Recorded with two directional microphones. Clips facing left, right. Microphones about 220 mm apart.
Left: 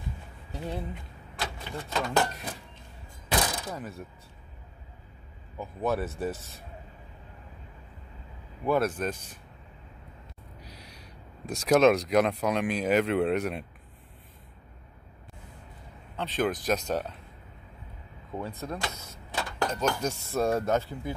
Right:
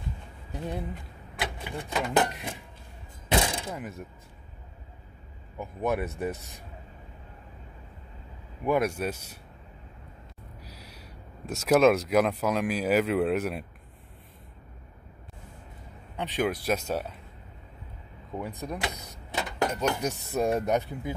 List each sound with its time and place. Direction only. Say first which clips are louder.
0.5 s speech: right 1 dB; 15° right (ahead or behind)
3.3 s a sound: right 2 dB; 25° right (ahead or behind)
3.7 s speech: right 1 dB; 15° right (ahead or behind)
5.6 s speech: even; 15° right (ahead or behind)
8.6 s speech: even; 15° right (ahead or behind)
10.6 s speech: even; 5° right (ahead or behind)
16.2 s speech: even; 15° right (ahead or behind)
18.4 s vehicle: right 1 dB; 15° right (ahead or behind)
19.9 s speech: right 1 dB; 15° right (ahead or behind)